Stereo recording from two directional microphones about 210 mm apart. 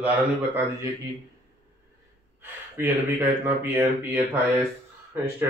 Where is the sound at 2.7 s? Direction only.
10° right (ahead or behind).